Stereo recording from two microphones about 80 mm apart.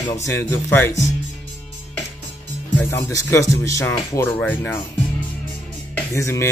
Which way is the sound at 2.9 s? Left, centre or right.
Left.